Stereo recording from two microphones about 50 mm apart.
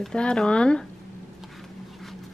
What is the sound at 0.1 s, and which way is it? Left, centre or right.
Speech, centre.